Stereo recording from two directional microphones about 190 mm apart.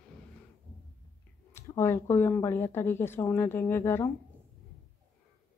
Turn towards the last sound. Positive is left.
turn(degrees=15)  # may be behind; listen again after turning